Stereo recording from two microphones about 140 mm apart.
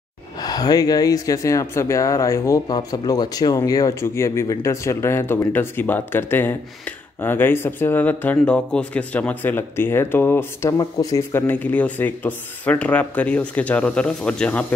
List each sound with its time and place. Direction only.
0.4 s speech: 25° left (ahead or behind); by 14.7 s 10° left (ahead or behind)